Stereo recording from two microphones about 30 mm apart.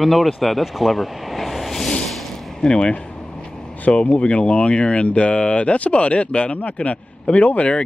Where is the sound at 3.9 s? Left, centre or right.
Left.